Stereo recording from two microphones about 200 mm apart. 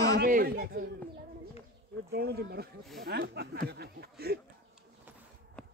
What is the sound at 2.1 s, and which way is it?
Speech, 55° right (ahead or behind).